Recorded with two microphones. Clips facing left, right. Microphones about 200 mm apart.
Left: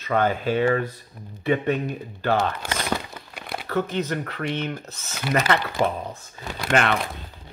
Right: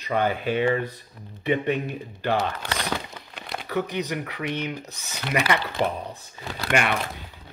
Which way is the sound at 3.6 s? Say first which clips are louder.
Left 2 dB; 15° right (ahead or behind).